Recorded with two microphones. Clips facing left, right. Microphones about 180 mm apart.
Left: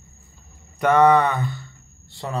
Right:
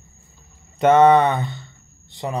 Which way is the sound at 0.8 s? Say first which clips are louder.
Right 3 dB; 20° right (ahead or behind).